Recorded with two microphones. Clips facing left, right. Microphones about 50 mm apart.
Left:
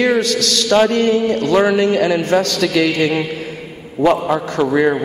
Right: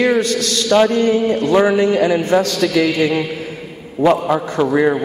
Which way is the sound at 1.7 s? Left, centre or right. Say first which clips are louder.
Even; left.